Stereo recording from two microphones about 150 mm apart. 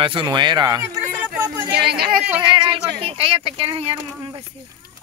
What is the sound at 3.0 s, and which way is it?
Speech, 40° right (ahead or behind).